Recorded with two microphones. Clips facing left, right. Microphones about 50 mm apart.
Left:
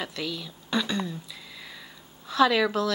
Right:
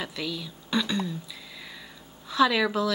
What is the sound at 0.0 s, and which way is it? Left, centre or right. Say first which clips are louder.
Speech: even; centre.